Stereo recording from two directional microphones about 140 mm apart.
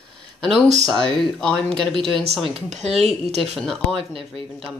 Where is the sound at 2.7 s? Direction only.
50° right (ahead or behind).